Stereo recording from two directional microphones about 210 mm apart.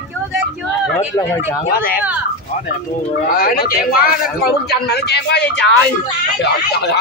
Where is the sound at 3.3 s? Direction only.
45° left (ahead or behind).